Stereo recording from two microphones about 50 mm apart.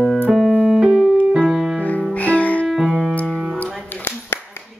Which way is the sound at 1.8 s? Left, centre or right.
Left.